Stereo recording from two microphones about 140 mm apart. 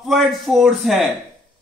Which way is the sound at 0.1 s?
Centre (ahead or behind).